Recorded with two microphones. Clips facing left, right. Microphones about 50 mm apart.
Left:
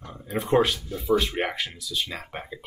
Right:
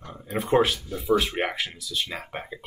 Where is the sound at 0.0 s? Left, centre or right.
Centre.